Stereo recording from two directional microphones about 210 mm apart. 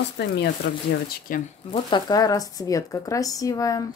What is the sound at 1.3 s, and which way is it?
Speech, 40° left (ahead or behind).